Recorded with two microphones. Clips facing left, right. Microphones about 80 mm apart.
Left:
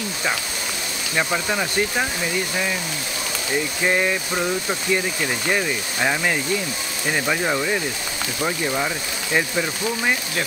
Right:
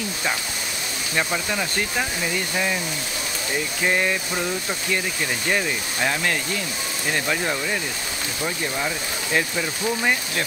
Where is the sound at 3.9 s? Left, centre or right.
Centre.